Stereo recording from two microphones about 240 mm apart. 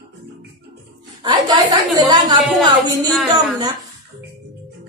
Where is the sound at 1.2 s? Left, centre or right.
Centre.